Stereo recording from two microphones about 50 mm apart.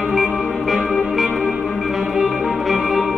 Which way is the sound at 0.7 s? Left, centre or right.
Centre.